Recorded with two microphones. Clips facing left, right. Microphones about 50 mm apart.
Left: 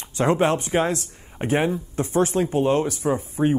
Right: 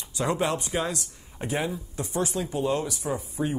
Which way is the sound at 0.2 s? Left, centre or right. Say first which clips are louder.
Left 7 dB; left.